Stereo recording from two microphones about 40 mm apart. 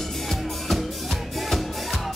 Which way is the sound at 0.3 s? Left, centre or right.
Centre.